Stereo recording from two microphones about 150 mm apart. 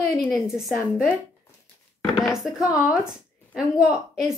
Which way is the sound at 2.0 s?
Centre (ahead or behind).